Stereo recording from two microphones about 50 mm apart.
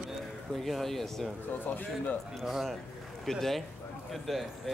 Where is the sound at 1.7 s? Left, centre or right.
Left.